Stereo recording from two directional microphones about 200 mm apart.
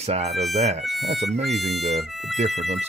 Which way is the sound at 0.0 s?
30° right (ahead or behind).